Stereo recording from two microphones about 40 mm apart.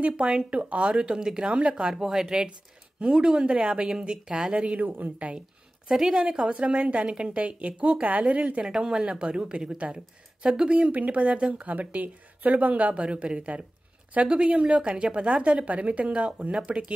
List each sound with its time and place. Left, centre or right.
0.4 s speech: right
1.0 s speech: centre
1.9 s speech: centre
4.8 s speech: right
5.9 s a woman's voice: centre
6.1 s speech: right
8.6 s speech: centre
10.9 s speech: right